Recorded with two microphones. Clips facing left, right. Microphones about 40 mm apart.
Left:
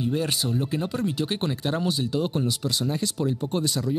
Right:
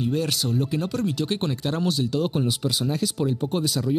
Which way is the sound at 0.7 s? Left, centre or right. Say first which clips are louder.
Right 1 dB; centre.